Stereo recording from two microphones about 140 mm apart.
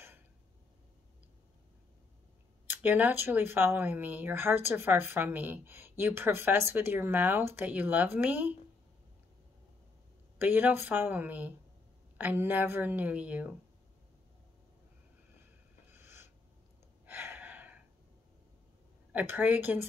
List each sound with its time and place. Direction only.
2.7 s speech: 15° right (ahead or behind)
10.4 s speech: 15° right (ahead or behind)
15.9 s a sound: 15° right (ahead or behind)
17.0 s gasp: 15° right (ahead or behind)
19.1 s speech: 15° right (ahead or behind)